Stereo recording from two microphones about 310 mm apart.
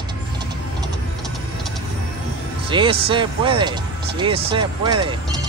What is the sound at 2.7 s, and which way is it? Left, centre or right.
Speech, centre.